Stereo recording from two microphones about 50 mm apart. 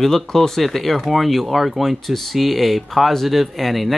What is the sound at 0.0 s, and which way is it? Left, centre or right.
Speech, centre.